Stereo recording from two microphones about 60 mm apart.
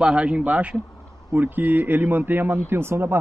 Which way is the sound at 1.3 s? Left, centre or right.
Right.